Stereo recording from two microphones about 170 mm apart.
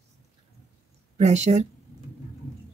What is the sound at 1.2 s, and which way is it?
Speech, 45° right (ahead or behind).